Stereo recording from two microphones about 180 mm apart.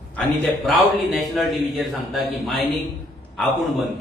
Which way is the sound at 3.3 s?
Centre (ahead or behind).